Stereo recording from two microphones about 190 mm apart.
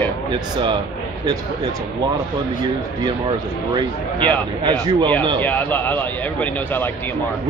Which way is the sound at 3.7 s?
25° right (ahead or behind).